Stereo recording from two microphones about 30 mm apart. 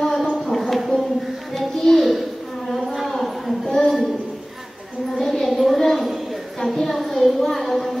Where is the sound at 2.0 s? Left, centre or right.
Centre.